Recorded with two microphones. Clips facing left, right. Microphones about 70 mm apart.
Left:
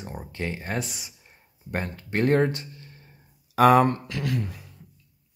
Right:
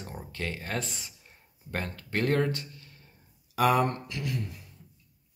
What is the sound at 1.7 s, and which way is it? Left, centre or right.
Speech, left.